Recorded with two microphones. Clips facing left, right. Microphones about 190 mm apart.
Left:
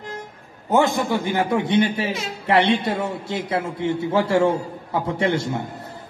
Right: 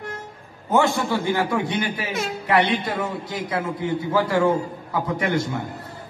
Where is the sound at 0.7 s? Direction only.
20° left (ahead or behind).